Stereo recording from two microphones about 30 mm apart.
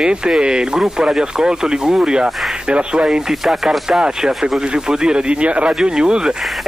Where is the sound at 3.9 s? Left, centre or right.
Right.